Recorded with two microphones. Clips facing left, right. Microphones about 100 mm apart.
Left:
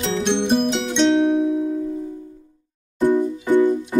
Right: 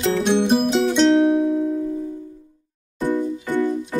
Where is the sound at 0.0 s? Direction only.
5° right (ahead or behind).